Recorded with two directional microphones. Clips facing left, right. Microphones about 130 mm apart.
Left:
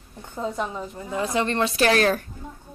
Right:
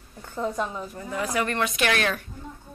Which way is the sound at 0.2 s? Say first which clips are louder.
Even; 20° left (ahead or behind).